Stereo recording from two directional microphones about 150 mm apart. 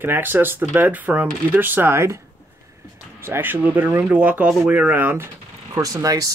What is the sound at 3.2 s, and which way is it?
Speech, 15° right (ahead or behind).